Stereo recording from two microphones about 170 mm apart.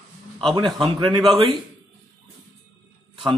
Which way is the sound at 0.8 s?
25° right (ahead or behind).